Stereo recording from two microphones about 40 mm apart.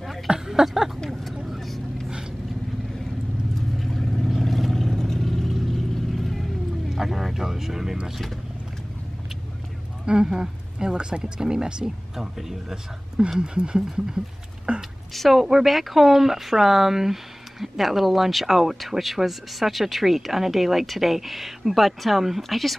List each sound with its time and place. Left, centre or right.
0.3 s a sound: centre
1.1 s vehicle: centre
3.8 s vehicle: centre
10.0 s speech: centre
13.4 s speech: right
14.7 s speech: right
15.1 s speech: centre